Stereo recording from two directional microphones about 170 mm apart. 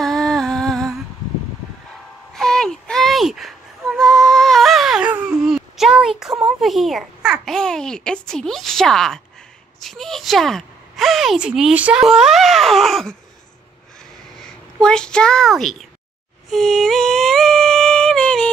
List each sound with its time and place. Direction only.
0.0 s music: 5° left (ahead or behind)
2.3 s a sound: 5° left (ahead or behind)
6.6 s speech: centre (ahead or behind)
14.4 s a child's voice: 5° left (ahead or behind)
16.4 s humming: centre (ahead or behind)